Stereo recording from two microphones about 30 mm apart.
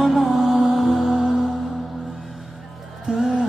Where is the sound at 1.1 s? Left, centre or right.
Right.